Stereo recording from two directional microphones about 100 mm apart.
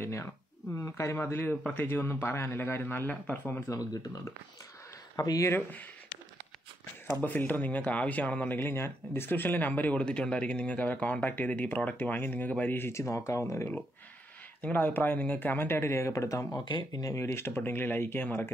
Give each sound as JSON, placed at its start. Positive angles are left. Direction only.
{"t": 0.0, "sound": "speech", "side_deg": 25}
{"t": 3.6, "sound": "speech", "side_deg": 35}
{"t": 5.5, "sound": "speech", "side_deg": 15}
{"t": 7.2, "sound": "speech", "side_deg": 20}
{"t": 14.6, "sound": "speech", "side_deg": 15}